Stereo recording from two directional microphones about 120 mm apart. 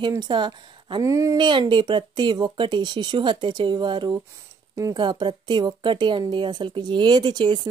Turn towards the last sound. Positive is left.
turn(degrees=-40)  # may be behind; listen again after turning